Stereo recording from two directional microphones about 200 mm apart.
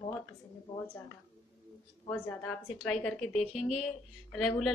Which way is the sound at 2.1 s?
10° left (ahead or behind).